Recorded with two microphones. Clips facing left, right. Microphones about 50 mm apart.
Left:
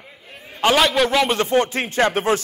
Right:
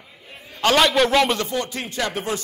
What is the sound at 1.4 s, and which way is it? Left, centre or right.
A man's voice, left.